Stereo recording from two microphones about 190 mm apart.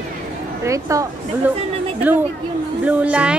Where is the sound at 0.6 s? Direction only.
15° right (ahead or behind).